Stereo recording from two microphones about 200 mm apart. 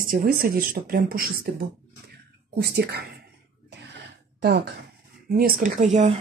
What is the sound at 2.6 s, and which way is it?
Speech, 55° right (ahead or behind).